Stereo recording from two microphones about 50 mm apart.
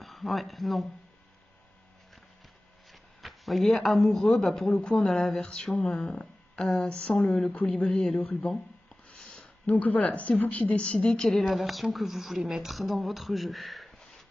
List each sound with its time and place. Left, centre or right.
0.0 s speech: centre
2.9 s speech: centre
4.8 s speech: centre
9.1 s a sound: centre
9.7 s a woman's voice: left
11.1 s a woman's voice: centre